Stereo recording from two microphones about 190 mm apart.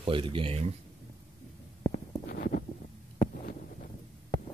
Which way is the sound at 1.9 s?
50° left (ahead or behind).